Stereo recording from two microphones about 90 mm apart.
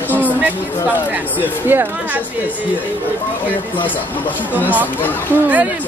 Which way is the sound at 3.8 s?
20° left (ahead or behind).